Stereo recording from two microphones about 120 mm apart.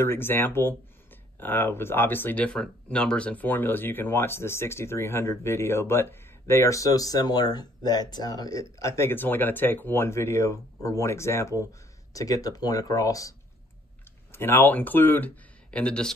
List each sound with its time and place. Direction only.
0.0 s speech: 20° left (ahead or behind)
14.3 s speech: 20° left (ahead or behind)